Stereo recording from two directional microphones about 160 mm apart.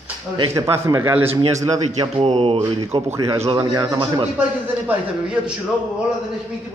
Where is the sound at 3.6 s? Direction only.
25° right (ahead or behind).